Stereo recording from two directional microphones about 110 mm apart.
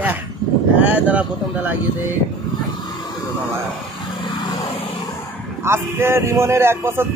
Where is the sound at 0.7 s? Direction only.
10° right (ahead or behind).